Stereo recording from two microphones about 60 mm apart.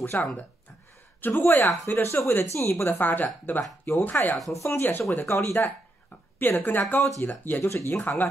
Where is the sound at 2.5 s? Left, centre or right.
Left.